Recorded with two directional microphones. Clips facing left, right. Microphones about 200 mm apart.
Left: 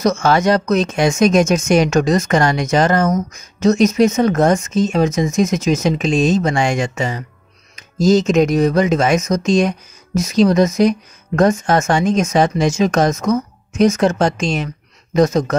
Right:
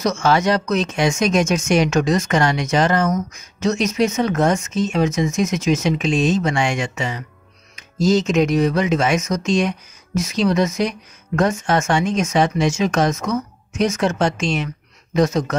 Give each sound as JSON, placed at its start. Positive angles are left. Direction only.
{"t": 0.0, "sound": "speech", "side_deg": 45}